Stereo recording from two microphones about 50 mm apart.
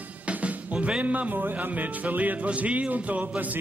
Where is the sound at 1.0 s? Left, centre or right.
Right.